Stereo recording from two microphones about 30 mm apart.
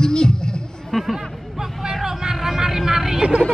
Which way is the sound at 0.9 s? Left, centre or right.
Centre.